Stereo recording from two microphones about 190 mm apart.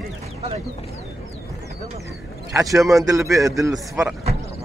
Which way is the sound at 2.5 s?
15° right (ahead or behind).